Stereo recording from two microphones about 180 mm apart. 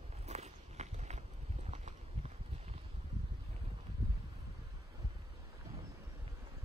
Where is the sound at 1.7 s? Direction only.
40° right (ahead or behind).